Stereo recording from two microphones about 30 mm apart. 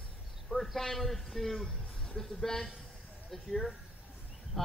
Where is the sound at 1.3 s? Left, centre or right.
Centre.